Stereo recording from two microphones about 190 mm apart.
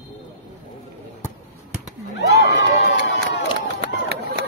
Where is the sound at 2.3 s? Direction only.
65° left (ahead or behind).